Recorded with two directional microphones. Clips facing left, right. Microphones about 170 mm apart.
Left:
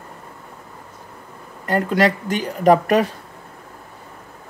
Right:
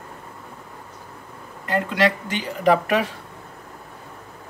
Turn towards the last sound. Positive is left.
turn(degrees=40)  # may be behind; listen again after turning